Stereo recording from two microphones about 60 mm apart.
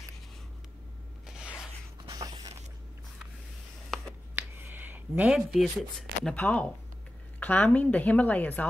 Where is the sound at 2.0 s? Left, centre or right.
Right.